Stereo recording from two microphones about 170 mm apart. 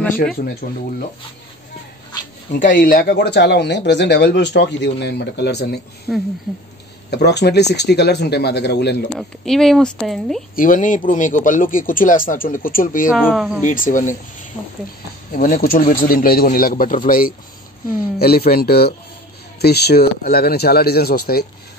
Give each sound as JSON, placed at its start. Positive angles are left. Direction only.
{"t": 0.4, "sound": "a man's voice", "side_deg": 60}
{"t": 2.6, "sound": "speech", "side_deg": 55}
{"t": 6.1, "sound": "speech", "side_deg": -5}
{"t": 7.1, "sound": "speech", "side_deg": 80}
{"t": 9.4, "sound": "speech", "side_deg": 0}
{"t": 10.5, "sound": "speech", "side_deg": 55}
{"t": 13.1, "sound": "speech", "side_deg": 0}
{"t": 13.6, "sound": "speech", "side_deg": 50}
{"t": 15.3, "sound": "a man's voice", "side_deg": 55}